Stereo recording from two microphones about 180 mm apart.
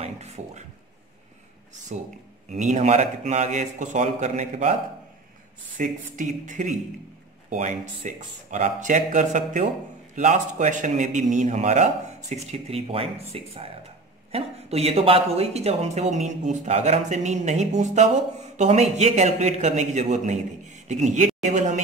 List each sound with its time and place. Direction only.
0.0 s speech: 35° right (ahead or behind)
1.9 s speech: 45° right (ahead or behind)
5.8 s speech: 45° right (ahead or behind)